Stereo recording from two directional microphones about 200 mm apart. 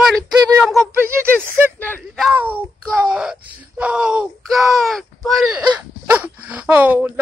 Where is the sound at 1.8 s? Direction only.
10° left (ahead or behind).